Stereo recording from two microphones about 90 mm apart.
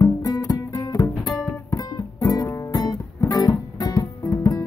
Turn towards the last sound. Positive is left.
turn(degrees=40)  # may be behind; listen again after turning